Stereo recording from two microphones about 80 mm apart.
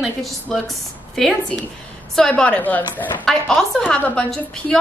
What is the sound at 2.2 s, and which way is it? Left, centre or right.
A woman's voice, centre.